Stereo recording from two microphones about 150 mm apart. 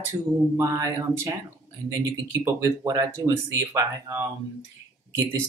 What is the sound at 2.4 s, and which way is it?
Speech, 20° right (ahead or behind).